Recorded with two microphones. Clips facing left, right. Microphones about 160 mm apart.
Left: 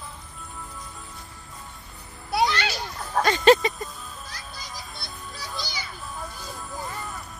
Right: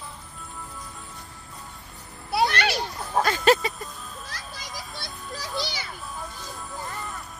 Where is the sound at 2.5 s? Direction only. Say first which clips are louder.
Right 2 dB; 65° right (ahead or behind).